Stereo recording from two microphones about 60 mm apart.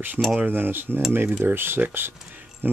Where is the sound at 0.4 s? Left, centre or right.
Right.